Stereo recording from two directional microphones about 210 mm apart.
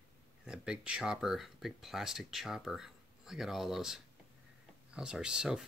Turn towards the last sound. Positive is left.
turn(degrees=-5)  # may be behind; listen again after turning